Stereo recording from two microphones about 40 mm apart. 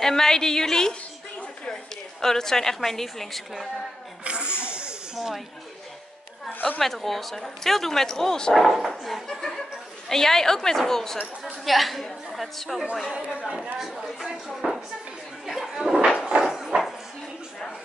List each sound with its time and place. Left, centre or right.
0.0 s speech: centre
2.2 s speech: centre
4.2 s a sound: right
5.1 s a woman's voice: centre
6.8 s speech: centre
8.8 s a woman's voice: centre
11.6 s a woman's voice: centre
13.1 s speech: centre
15.4 s a sound: centre
16.6 s dog: centre